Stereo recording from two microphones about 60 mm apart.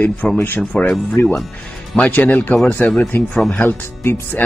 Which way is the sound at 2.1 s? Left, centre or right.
Left.